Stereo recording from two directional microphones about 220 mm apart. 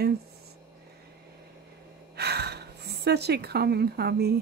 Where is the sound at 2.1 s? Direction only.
50° right (ahead or behind).